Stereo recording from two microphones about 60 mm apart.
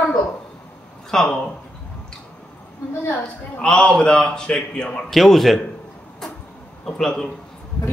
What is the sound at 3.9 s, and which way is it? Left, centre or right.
Speech, centre.